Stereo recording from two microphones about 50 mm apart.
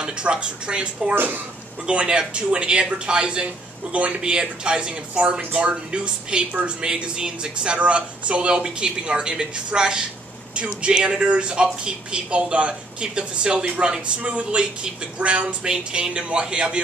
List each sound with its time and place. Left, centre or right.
0.0 s speech: centre
1.1 s speech: right
1.9 s speech: centre